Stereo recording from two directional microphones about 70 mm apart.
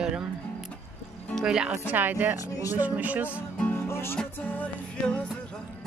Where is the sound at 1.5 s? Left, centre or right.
Centre.